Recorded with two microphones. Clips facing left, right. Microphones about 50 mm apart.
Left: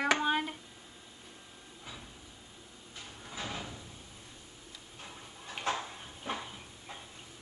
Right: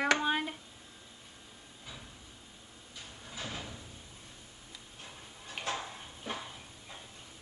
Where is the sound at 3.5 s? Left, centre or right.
Centre.